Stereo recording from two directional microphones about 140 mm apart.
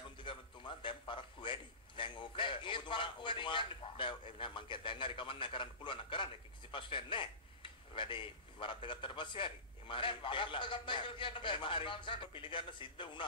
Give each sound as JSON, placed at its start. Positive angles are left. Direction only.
{"t": 0.2, "sound": "a man's voice", "side_deg": 35}